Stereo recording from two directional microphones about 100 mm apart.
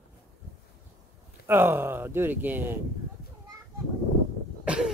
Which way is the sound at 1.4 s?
25° right (ahead or behind).